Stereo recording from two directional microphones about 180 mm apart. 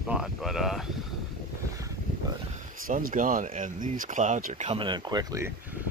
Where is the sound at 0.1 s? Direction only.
Centre (ahead or behind).